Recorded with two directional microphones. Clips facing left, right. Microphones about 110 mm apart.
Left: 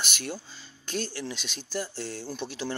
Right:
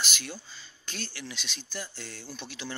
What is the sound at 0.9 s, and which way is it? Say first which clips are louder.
Speech: left 8 dB; 40° left (ahead or behind).